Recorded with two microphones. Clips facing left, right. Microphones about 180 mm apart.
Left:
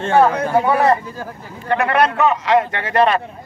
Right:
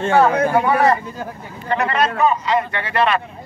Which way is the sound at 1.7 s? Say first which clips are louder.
Left 3 dB; 60° left (ahead or behind).